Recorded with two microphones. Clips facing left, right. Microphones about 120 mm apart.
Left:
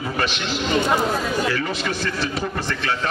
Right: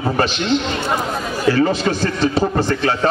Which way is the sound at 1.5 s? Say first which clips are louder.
Right 8 dB; 35° right (ahead or behind).